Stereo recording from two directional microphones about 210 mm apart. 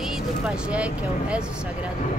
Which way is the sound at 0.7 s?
5° right (ahead or behind).